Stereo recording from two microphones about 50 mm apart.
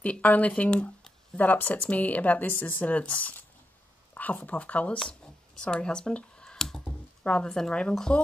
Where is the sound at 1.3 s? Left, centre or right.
Left.